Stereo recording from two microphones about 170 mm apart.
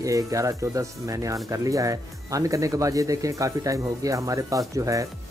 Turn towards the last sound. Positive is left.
turn(degrees=-20)  # may be behind; listen again after turning